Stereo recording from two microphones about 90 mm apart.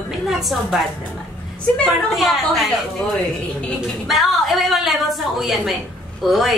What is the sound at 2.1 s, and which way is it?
Speech, centre (ahead or behind).